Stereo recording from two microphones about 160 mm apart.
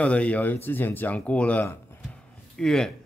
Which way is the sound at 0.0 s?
10° left (ahead or behind).